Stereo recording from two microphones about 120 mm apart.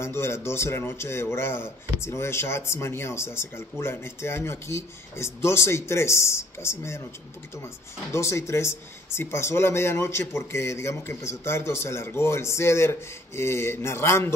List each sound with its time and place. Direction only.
0.0 s speech: 20° left (ahead or behind)
8.1 s speech: 25° left (ahead or behind)